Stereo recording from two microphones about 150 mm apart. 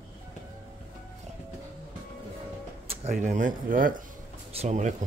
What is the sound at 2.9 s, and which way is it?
Speech, 50° right (ahead or behind).